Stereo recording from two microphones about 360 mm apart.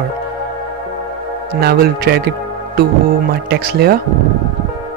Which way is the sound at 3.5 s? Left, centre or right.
Right.